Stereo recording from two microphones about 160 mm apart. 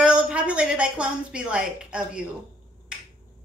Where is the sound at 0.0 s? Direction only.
5° right (ahead or behind).